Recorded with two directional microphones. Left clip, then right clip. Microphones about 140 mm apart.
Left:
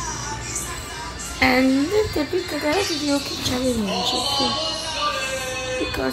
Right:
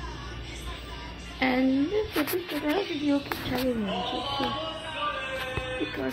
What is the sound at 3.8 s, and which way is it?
Music, 25° left (ahead or behind).